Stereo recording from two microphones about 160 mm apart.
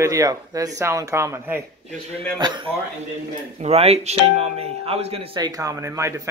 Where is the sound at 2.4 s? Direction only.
30° right (ahead or behind).